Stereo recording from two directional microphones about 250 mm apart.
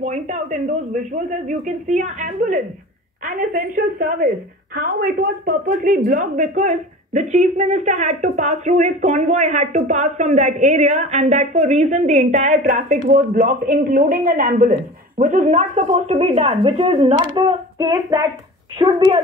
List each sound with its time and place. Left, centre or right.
0.0 s a woman's voice: right